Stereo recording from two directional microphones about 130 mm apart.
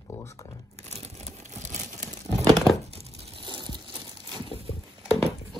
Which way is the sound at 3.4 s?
35° right (ahead or behind).